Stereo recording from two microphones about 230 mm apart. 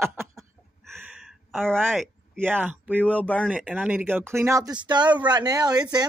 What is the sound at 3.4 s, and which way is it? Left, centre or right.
Speech, centre.